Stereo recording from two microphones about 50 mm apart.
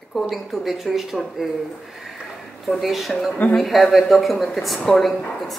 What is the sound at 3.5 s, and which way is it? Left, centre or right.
Speech, centre.